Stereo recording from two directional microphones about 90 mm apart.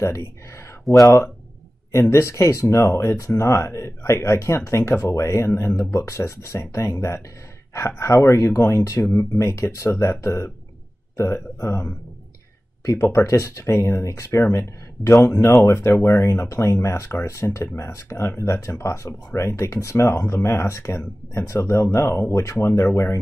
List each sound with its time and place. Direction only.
0.0 s speech: 30° left (ahead or behind)